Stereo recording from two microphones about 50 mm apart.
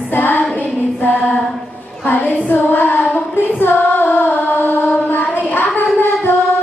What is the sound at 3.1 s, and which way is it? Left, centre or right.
Female singing, left.